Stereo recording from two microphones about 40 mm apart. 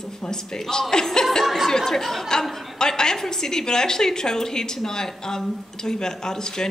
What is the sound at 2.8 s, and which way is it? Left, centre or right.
A woman's voice, centre.